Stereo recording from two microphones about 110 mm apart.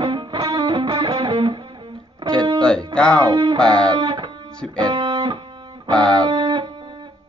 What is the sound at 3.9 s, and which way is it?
Music, 45° right (ahead or behind).